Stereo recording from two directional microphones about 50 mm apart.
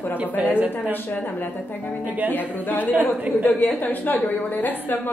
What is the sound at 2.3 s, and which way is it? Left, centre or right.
Speech, left.